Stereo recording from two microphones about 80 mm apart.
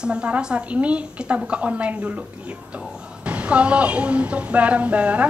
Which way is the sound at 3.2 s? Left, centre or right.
Centre.